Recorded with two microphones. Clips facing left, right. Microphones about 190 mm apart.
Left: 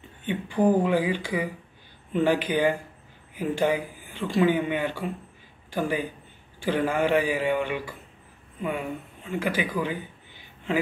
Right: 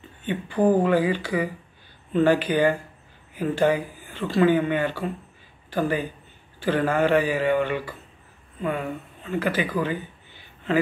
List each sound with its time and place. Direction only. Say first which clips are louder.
0.2 s speech: right 1 dB; 15° left (ahead or behind)
2.4 s speech: right 3 dB; 50° right (ahead or behind)
3.3 s speech: right 3 dB; 15° left (ahead or behind)